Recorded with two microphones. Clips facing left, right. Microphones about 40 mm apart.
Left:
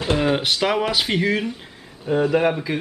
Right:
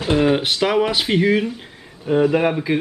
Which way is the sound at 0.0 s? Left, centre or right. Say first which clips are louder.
Right 3 dB; centre.